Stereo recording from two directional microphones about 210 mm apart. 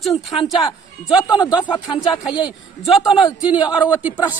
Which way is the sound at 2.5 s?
Centre (ahead or behind).